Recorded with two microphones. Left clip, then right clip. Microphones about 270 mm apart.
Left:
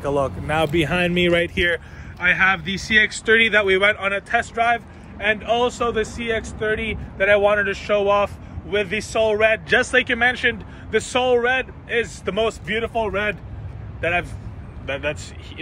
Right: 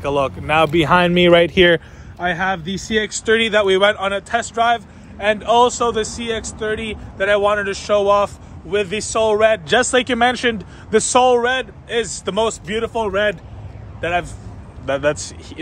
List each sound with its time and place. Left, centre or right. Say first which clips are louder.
0.5 s speech: right 8 dB; right
2.2 s a man's voice: left 3 dB; centre